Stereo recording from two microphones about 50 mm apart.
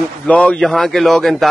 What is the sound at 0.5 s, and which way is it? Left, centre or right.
Speech, centre.